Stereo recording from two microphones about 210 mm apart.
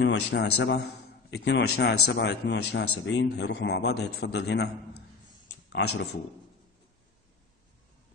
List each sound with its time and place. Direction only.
0.0 s a man's voice: 60° left (ahead or behind)